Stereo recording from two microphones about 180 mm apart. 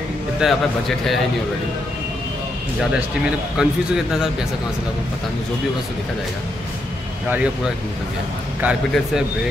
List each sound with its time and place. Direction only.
0.4 s a man's voice: centre (ahead or behind)
3.5 s a man's voice: 5° right (ahead or behind)
8.5 s a man's voice: 5° right (ahead or behind)